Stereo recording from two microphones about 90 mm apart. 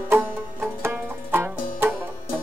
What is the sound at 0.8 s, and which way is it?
Banjo, 25° right (ahead or behind).